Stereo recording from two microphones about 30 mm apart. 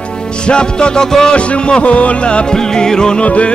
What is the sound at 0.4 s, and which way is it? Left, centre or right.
Music, left.